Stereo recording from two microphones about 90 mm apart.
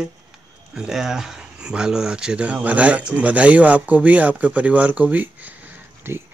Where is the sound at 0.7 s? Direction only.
5° right (ahead or behind).